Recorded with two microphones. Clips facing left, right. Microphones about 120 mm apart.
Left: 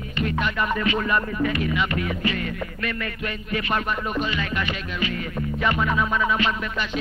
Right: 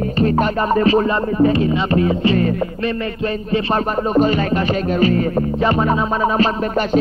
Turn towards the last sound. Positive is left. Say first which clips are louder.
# right 11 dB
turn(degrees=-40)  # may be behind; listen again after turning